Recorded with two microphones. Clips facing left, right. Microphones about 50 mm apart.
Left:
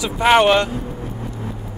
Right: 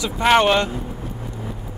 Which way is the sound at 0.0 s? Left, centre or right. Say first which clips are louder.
Left 2 dB; centre.